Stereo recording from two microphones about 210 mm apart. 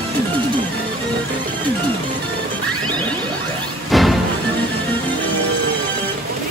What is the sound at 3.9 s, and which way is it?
Music, centre (ahead or behind).